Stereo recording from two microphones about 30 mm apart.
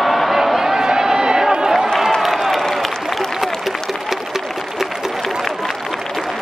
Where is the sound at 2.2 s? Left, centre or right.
Centre.